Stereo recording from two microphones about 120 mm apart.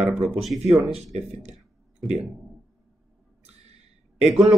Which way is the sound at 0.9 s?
60° right (ahead or behind).